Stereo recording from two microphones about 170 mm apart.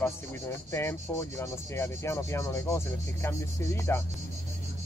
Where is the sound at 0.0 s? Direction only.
15° left (ahead or behind).